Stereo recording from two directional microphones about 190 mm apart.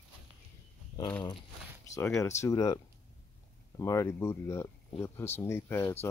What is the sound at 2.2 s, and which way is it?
Speech, 15° left (ahead or behind).